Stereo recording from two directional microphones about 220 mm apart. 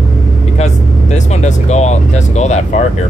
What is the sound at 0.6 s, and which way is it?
Speech, 30° left (ahead or behind).